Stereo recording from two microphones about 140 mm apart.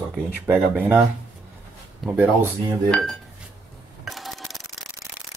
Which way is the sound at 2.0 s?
Centre (ahead or behind).